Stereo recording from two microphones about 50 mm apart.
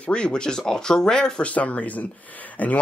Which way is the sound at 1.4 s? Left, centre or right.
Left.